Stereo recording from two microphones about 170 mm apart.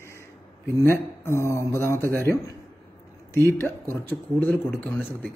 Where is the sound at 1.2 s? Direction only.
15° left (ahead or behind).